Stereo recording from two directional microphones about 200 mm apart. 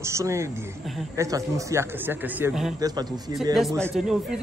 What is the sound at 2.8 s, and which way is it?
Speech, 20° right (ahead or behind).